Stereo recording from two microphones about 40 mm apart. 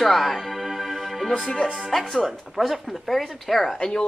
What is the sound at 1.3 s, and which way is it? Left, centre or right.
Speech, centre.